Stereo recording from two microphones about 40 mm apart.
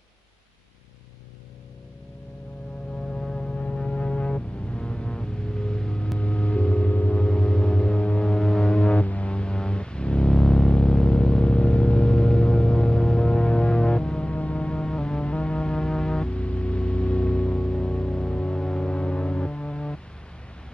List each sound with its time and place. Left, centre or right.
3.1 s foghorn: centre
6.1 s music: left
7.2 s music: left